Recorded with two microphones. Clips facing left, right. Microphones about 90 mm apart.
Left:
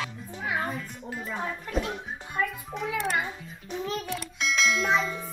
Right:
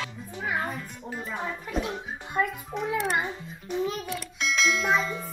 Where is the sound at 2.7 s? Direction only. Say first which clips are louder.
Right 5 dB; centre (ahead or behind).